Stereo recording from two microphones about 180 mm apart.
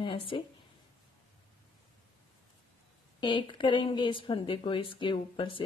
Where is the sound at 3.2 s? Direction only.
25° left (ahead or behind).